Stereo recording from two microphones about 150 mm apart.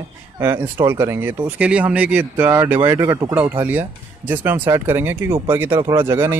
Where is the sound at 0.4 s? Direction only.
15° right (ahead or behind).